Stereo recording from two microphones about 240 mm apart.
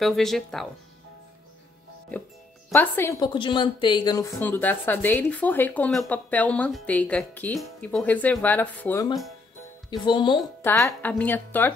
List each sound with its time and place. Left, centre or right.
0.0 s speech: centre
2.7 s a woman's voice: centre